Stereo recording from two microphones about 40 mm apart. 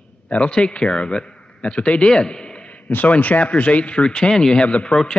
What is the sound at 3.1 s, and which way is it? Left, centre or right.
A man's voice, left.